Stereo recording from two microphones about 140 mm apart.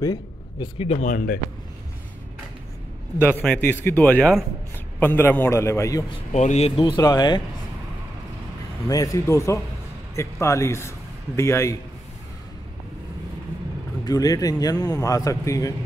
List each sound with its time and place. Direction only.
0.0 s a sound: 30° left (ahead or behind)
0.7 s speech: 45° left (ahead or behind)
1.0 s a man's voice: 90° left
3.2 s speech: 15° left (ahead or behind)
6.3 s speech: 55° left (ahead or behind)
6.8 s speech: 30° left (ahead or behind)
8.8 s a man's voice: 25° left (ahead or behind)
14.0 s speech: 25° left (ahead or behind)